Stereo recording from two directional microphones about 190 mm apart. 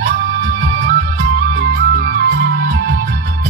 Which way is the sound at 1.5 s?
60° right (ahead or behind).